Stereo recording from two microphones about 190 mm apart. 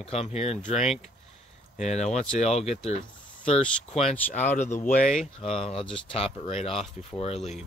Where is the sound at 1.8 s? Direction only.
35° left (ahead or behind).